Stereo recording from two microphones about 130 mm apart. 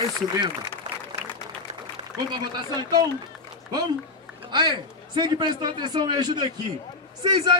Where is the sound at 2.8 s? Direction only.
30° right (ahead or behind).